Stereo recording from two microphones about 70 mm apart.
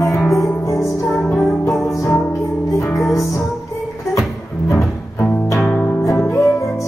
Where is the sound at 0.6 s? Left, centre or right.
Left.